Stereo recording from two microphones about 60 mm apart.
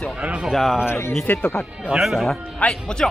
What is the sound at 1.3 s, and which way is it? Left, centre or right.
Speech, centre.